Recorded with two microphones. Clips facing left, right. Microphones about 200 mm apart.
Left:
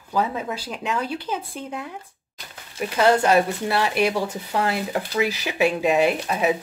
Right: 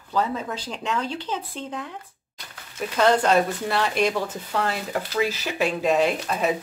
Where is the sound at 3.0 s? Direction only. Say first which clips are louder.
Left 1 dB; 10° left (ahead or behind).